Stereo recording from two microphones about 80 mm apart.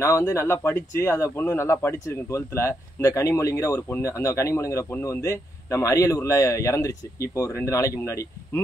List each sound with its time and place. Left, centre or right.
0.3 s speech: left